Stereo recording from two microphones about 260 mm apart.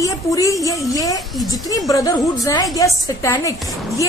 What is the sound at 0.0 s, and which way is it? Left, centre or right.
Speech, centre.